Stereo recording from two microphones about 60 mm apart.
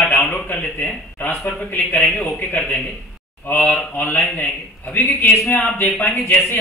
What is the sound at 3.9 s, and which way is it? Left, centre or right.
Speech, left.